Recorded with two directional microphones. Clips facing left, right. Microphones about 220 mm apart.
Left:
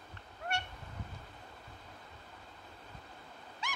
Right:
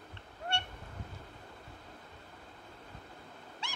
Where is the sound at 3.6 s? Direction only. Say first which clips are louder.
Left 3 dB; 30° right (ahead or behind).